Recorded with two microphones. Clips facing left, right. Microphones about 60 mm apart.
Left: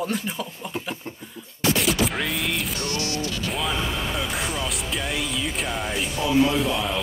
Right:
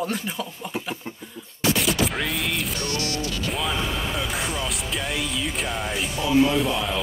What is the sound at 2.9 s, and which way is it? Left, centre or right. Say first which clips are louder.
Speech: even; left.